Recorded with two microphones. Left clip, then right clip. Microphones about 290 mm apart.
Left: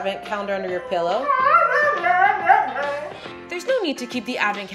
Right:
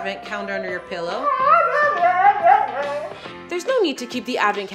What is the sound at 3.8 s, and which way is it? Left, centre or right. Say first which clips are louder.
Speech: right 4 dB; centre.